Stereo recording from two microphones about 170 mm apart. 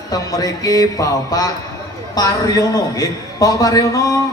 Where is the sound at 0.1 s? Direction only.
20° left (ahead or behind).